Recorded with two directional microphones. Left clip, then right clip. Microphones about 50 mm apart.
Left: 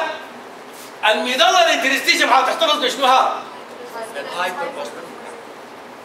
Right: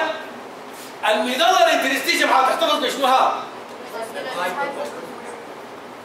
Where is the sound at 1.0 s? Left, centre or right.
Left.